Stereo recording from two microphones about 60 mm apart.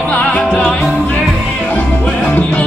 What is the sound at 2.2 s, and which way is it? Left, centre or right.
Music, left.